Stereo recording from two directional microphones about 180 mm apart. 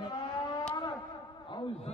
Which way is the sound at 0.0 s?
25° left (ahead or behind).